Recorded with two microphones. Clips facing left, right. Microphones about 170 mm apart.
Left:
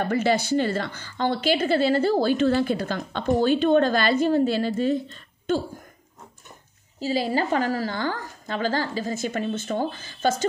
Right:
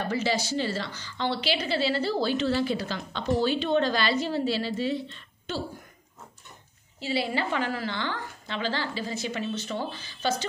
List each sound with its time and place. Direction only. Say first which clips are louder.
0.1 s a woman's voice: left 7 dB; 55° left (ahead or behind)
7.0 s a woman's voice: left 4 dB; 40° left (ahead or behind)